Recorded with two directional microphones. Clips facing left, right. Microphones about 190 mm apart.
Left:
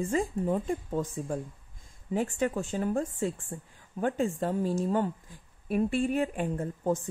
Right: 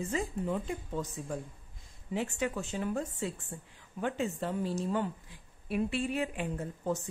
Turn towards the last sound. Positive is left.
turn(degrees=50)  # may be behind; listen again after turning